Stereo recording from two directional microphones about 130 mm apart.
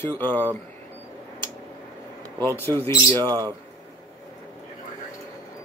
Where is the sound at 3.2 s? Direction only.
30° right (ahead or behind).